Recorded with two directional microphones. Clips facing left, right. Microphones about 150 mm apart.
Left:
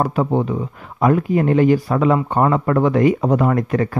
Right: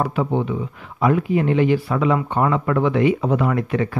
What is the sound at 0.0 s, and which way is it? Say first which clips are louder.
Speech: left 3 dB; 40° left (ahead or behind).